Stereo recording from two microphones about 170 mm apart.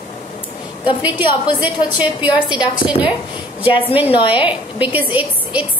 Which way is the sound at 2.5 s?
25° left (ahead or behind).